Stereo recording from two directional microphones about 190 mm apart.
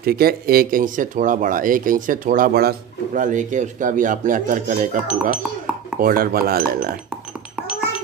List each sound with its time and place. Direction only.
0.0 s speech: 50° right (ahead or behind)